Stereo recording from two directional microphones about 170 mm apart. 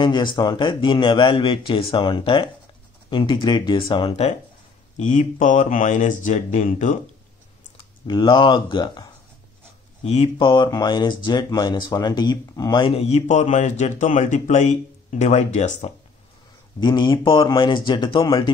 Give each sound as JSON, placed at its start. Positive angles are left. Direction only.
{"t": 0.0, "sound": "a man's voice", "side_deg": 30}
{"t": 4.9, "sound": "speech", "side_deg": 45}
{"t": 7.7, "sound": "speech", "side_deg": 25}
{"t": 10.0, "sound": "speech", "side_deg": 35}
{"t": 16.8, "sound": "a man's voice", "side_deg": 25}